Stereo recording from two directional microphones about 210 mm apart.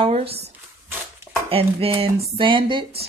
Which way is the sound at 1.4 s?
25° right (ahead or behind).